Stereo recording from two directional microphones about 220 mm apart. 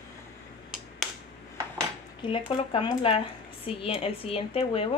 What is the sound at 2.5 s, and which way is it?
Speech, 25° left (ahead or behind).